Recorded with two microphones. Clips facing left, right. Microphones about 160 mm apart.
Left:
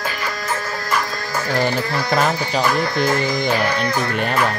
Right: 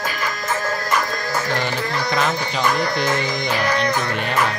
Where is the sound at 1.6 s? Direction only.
40° left (ahead or behind).